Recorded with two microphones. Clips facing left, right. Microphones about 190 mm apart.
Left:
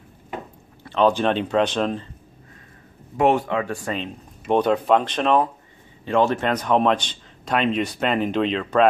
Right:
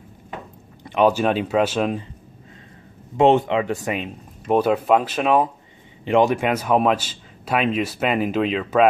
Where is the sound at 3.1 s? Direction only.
25° right (ahead or behind).